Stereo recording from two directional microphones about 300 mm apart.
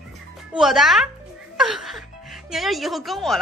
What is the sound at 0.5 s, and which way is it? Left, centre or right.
A woman's voice, centre.